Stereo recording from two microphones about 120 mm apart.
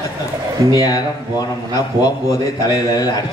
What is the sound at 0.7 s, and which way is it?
Speech, 30° left (ahead or behind).